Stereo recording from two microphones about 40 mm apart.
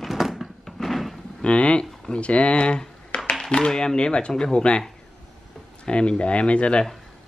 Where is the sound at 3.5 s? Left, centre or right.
Left.